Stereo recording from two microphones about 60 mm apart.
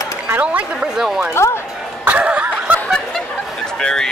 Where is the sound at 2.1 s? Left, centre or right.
Right.